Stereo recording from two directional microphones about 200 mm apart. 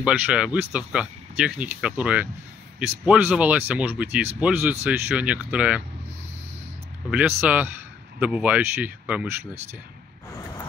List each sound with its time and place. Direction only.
0.0 s speech: 5° right (ahead or behind)
7.1 s speech: 5° right (ahead or behind)